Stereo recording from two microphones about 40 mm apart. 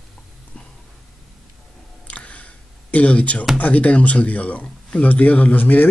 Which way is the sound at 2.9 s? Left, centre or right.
Left.